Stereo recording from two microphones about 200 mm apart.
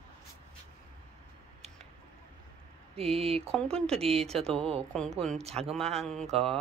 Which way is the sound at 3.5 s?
5° left (ahead or behind).